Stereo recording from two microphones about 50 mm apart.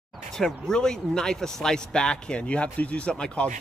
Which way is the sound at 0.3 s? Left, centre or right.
Centre.